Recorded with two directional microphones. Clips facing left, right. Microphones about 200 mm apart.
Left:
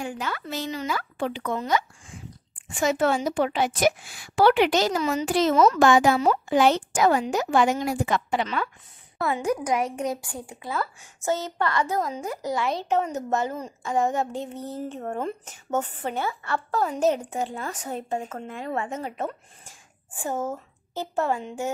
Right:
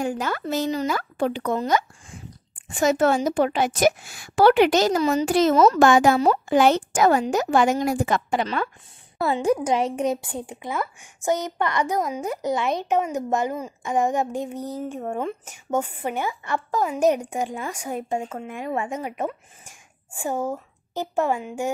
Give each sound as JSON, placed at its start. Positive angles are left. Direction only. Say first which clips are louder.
{"t": 0.0, "sound": "a woman's voice", "louder": "right 6 dB", "side_deg": -45}
{"t": 9.2, "sound": "a woman's voice", "louder": "right 4 dB", "side_deg": -30}